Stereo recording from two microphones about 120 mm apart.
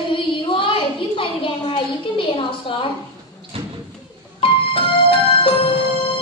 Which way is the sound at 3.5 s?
50° right (ahead or behind).